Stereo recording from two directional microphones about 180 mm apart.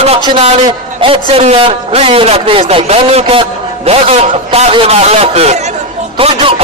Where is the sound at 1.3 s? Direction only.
35° right (ahead or behind).